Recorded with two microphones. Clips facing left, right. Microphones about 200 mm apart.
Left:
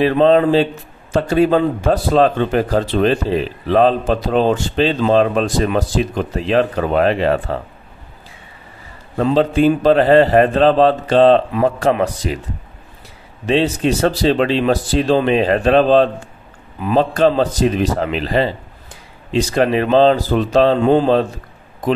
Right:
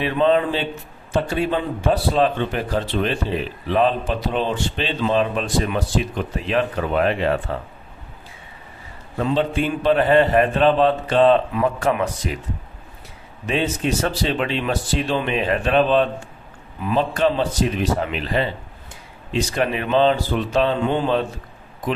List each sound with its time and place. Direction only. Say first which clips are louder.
0.0 s speech: left 6 dB; 35° left (ahead or behind)
9.1 s speech: left 6 dB; 35° left (ahead or behind)
13.5 s speech: left 6 dB; 35° left (ahead or behind)